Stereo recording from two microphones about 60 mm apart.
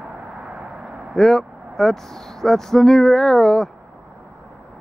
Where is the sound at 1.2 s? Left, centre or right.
Centre.